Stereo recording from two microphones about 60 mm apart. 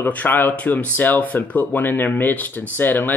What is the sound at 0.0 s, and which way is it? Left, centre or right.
Speech, left.